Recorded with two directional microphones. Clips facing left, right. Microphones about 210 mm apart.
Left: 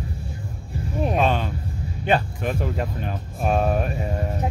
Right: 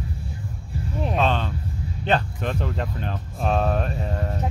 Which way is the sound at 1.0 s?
10° left (ahead or behind).